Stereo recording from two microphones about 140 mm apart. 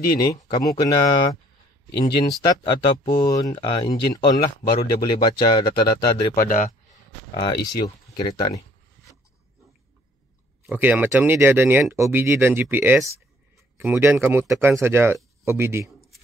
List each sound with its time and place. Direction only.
0.2 s speech: 25° left (ahead or behind)
6.3 s speech: 80° left
7.3 s speech: 30° left (ahead or behind)
10.7 s speech: 15° right (ahead or behind)